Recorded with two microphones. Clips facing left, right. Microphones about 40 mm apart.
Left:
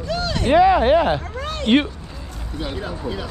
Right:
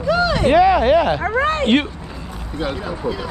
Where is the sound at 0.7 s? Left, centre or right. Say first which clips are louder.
Right 1 dB; right.